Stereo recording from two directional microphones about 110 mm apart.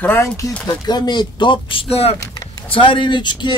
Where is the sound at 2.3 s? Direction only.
35° left (ahead or behind).